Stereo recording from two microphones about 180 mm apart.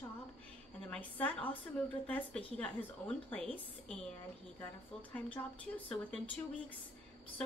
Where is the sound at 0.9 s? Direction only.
5° left (ahead or behind).